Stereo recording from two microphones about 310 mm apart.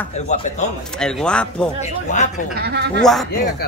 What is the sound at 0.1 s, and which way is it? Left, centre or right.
Speech, left.